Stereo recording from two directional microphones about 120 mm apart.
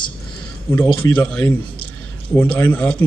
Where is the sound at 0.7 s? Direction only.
20° left (ahead or behind).